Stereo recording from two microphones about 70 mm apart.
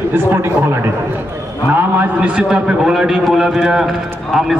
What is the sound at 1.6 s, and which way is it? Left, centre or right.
A man's voice, right.